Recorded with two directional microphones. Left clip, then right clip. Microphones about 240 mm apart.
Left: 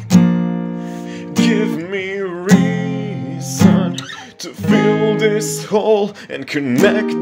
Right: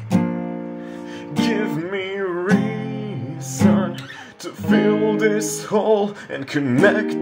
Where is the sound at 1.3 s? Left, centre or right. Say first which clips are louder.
Left 5 dB; left.